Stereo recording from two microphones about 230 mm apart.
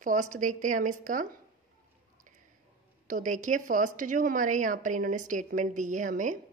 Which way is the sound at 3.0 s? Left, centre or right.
Right.